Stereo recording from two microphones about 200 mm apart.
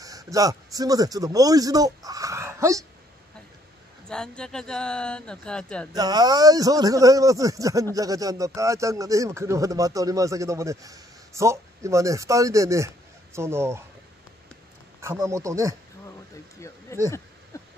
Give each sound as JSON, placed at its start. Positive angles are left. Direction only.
{"t": 0.0, "sound": "speech", "side_deg": -15}
{"t": 4.1, "sound": "speech", "side_deg": 5}
{"t": 5.9, "sound": "speech", "side_deg": -20}
{"t": 15.0, "sound": "speech", "side_deg": -15}
{"t": 16.5, "sound": "a sound", "side_deg": 15}